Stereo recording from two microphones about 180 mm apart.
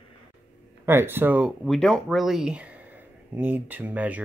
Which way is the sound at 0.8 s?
15° right (ahead or behind).